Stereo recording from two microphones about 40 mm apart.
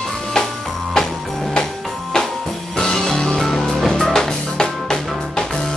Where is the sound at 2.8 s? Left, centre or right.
Centre.